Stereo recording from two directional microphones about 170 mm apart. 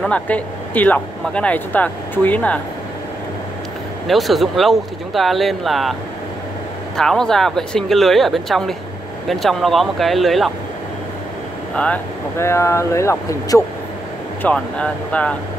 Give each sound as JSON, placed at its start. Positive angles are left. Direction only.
{"t": 0.0, "sound": "speech", "side_deg": 10}
{"t": 4.1, "sound": "speech", "side_deg": 0}
{"t": 7.0, "sound": "speech", "side_deg": 5}
{"t": 11.7, "sound": "speech", "side_deg": 10}
{"t": 14.4, "sound": "speech", "side_deg": 5}